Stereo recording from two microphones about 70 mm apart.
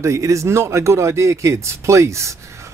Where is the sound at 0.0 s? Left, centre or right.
Right.